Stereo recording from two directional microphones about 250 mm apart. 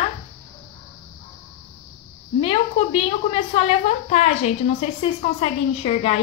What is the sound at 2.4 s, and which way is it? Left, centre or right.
A woman's voice, left.